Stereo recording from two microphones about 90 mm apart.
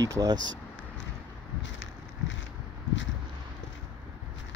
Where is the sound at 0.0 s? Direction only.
45° right (ahead or behind).